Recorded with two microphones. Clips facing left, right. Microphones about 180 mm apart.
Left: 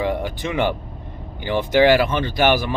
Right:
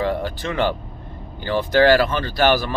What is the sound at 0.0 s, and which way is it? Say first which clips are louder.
Speech: even; 15° left (ahead or behind).